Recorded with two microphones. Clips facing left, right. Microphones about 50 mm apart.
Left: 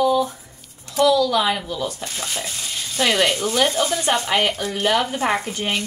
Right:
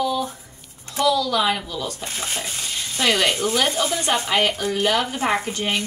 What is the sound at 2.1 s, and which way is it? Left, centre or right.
Speech, centre.